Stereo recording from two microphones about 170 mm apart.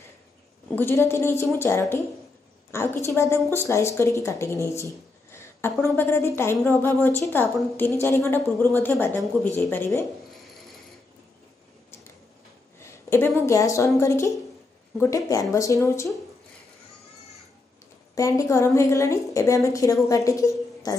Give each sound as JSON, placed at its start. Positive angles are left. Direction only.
{"t": 0.7, "sound": "speech", "side_deg": 10}
{"t": 12.8, "sound": "a sound", "side_deg": 15}
{"t": 13.5, "sound": "a woman's voice", "side_deg": 20}
{"t": 18.1, "sound": "a woman's voice", "side_deg": 20}